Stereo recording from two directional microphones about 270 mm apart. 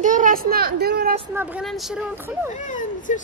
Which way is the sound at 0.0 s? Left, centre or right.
Right.